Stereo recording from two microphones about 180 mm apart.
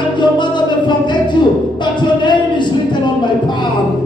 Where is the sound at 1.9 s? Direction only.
25° left (ahead or behind).